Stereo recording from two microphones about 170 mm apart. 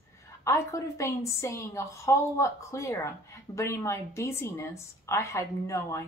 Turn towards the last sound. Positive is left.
turn(degrees=15)  # may be behind; listen again after turning